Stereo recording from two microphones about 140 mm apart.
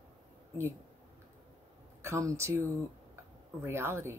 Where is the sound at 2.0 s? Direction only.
20° right (ahead or behind).